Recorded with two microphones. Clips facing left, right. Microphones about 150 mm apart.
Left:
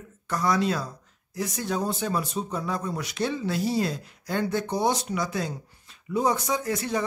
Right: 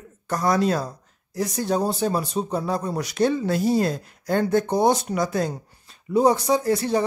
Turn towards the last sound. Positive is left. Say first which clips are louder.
# right 6 dB
turn(degrees=-35)  # may be behind; listen again after turning